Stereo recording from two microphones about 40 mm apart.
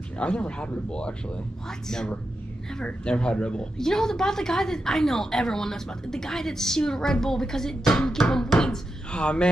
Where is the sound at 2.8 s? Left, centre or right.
Left.